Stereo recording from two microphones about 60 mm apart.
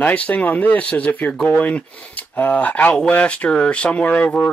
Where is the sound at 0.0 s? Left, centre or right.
Left.